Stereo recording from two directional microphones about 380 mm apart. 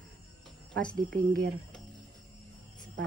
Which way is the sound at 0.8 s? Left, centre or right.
Centre.